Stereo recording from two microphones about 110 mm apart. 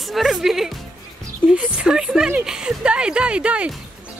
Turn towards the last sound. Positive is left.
turn(degrees=-10)  # may be behind; listen again after turning